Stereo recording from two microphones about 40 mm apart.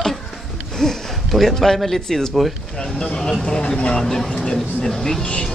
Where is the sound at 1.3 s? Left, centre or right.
Centre.